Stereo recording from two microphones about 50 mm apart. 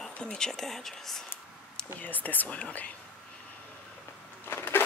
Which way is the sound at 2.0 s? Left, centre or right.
Left.